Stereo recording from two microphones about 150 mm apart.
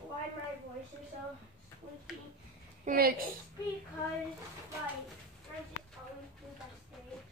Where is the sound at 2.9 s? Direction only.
75° right (ahead or behind).